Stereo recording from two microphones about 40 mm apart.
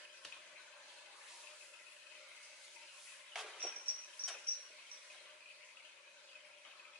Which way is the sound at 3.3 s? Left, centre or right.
Centre.